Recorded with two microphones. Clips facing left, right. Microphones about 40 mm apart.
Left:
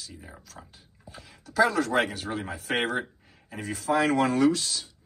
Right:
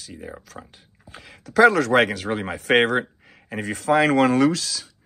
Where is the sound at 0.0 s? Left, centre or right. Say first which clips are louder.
Right 8 dB; right.